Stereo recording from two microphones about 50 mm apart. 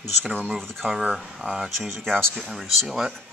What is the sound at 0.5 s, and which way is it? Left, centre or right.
Speech, centre.